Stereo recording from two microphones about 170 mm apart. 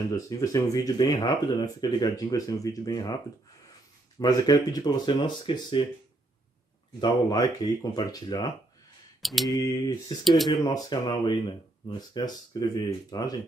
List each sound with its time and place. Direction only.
0.1 s speech: 20° left (ahead or behind)
4.2 s speech: 25° left (ahead or behind)
7.0 s speech: 25° left (ahead or behind)
9.2 s mantra: centre (ahead or behind)
9.6 s speech: 25° left (ahead or behind)
10.2 s mantra: centre (ahead or behind)
10.5 s speech: 25° left (ahead or behind)